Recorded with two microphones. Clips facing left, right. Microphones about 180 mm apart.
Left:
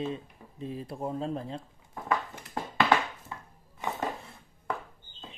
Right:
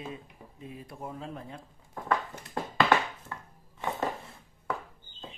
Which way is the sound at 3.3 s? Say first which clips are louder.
Even; 15° left (ahead or behind).